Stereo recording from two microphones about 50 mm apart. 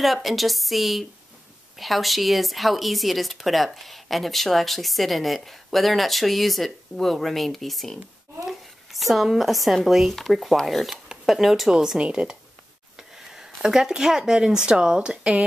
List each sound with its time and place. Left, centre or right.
0.0 s speech: centre
10.9 s speech: centre
11.7 s speech: centre